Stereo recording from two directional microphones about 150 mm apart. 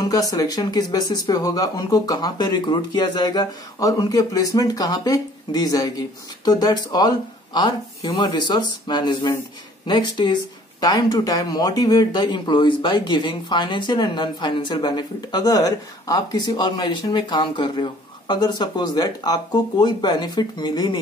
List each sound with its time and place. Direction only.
0.0 s speech: 25° left (ahead or behind)